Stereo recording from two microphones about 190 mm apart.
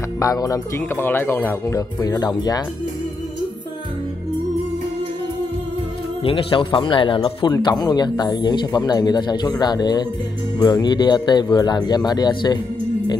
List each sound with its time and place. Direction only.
0.2 s speech: 15° left (ahead or behind)
6.2 s speech: 25° left (ahead or behind)